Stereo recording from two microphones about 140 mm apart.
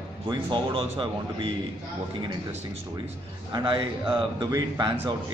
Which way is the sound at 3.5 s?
35° right (ahead or behind).